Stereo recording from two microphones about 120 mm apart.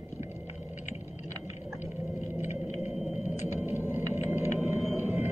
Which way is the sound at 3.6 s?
20° right (ahead or behind).